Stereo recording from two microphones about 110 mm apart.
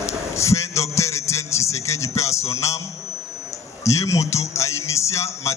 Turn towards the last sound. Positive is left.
turn(degrees=25)  # may be behind; listen again after turning